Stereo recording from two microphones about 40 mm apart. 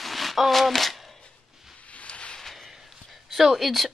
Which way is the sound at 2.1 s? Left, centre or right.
Left.